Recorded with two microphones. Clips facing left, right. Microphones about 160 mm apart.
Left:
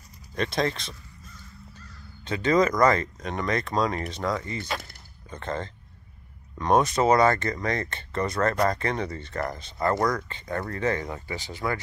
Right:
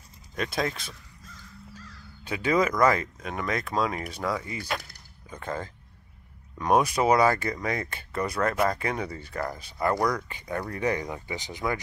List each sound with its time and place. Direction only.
0.4 s speech: 5° right (ahead or behind)
2.2 s speech: 10° right (ahead or behind)